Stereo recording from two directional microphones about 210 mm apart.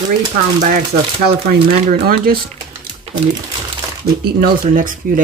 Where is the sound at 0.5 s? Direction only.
40° right (ahead or behind).